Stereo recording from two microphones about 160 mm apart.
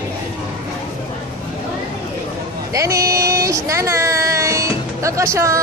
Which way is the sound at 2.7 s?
20° right (ahead or behind).